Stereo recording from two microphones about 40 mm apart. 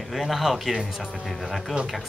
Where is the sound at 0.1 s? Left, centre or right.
Centre.